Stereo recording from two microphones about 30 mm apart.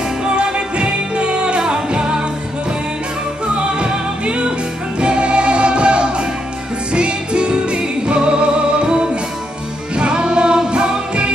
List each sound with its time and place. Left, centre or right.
0.4 s music: right
5.0 s music: right